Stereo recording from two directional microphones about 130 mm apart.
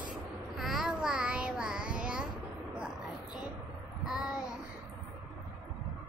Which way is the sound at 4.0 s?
5° right (ahead or behind).